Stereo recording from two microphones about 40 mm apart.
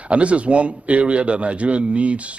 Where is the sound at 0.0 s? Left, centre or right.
Right.